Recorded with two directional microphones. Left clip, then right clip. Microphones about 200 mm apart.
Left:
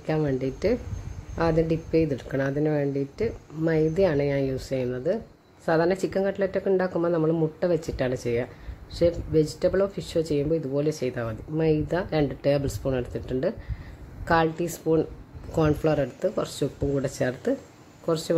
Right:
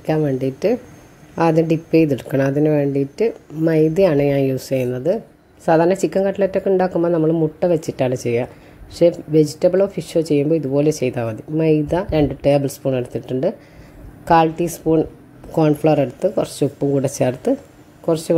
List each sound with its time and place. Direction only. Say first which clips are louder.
0.0 s speech: right 7 dB; 10° right (ahead or behind)
1.3 s speech: right 8 dB; 20° right (ahead or behind)